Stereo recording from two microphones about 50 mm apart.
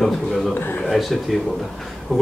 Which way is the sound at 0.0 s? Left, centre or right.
Centre.